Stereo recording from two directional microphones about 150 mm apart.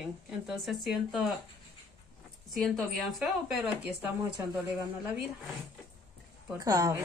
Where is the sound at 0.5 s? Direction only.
Centre (ahead or behind).